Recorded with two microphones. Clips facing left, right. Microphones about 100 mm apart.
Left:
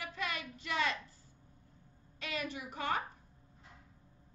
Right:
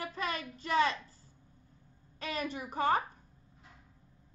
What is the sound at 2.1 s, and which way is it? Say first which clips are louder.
Speech: right 4 dB; 40° right (ahead or behind).